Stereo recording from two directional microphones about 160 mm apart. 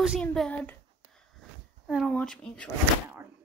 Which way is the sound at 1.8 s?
Centre (ahead or behind).